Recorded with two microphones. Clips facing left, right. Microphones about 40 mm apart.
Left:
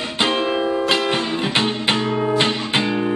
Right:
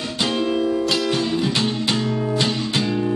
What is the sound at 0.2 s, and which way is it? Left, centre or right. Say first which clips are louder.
Music: left 2 dB; left.